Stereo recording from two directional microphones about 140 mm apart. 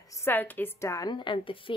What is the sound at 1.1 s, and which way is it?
Speech, 35° left (ahead or behind).